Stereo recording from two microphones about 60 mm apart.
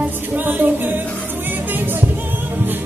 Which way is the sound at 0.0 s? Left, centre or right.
Right.